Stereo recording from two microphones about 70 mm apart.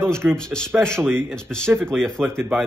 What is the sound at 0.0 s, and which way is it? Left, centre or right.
Speech, right.